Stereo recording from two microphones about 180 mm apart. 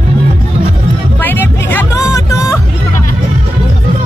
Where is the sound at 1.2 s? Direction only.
10° left (ahead or behind).